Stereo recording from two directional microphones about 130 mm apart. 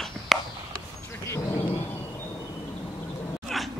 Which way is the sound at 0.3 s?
Centre (ahead or behind).